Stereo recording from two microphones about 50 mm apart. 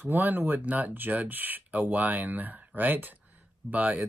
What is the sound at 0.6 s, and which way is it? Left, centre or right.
Speech, right.